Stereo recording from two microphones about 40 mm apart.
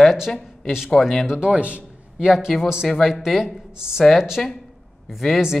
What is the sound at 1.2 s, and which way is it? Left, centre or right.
Speech, right.